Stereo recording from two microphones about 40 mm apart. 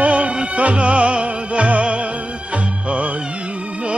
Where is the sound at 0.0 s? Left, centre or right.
Right.